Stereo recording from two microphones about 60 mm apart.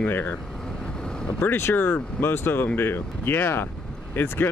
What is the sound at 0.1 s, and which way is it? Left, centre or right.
Speech, left.